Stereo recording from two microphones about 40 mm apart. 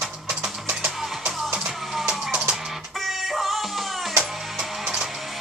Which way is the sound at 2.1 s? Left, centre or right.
Right.